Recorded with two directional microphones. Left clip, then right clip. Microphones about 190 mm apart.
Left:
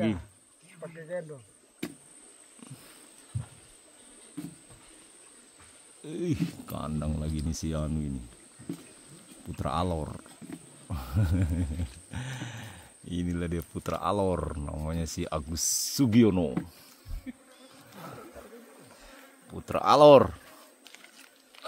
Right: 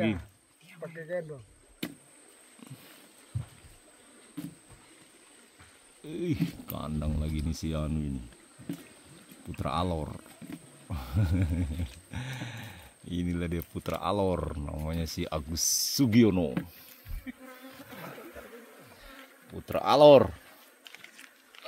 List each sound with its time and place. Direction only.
0.7 s a sound: 60° right (ahead or behind)
4.4 s a sound: 60° right (ahead or behind)
6.0 s speech: 10° left (ahead or behind)
9.5 s speech: 5° left (ahead or behind)
17.3 s insect: 40° right (ahead or behind)
19.5 s speech: 15° left (ahead or behind)